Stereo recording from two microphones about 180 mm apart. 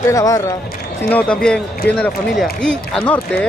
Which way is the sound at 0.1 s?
20° left (ahead or behind).